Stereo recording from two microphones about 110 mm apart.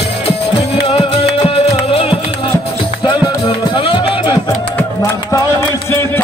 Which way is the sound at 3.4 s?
50° left (ahead or behind).